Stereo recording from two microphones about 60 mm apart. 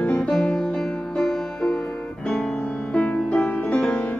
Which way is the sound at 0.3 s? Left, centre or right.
Centre.